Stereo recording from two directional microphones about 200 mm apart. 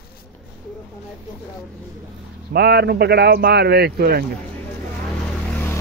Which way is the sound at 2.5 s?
55° right (ahead or behind).